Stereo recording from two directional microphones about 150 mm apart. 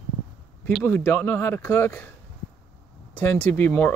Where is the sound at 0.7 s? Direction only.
15° left (ahead or behind).